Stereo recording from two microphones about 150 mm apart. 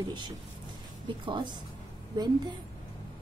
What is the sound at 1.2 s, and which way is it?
Speech, 30° right (ahead or behind).